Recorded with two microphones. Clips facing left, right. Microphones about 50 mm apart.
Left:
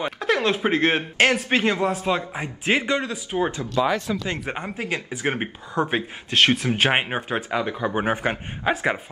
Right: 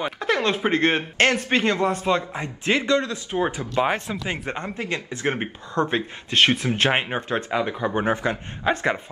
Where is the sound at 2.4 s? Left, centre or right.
Centre.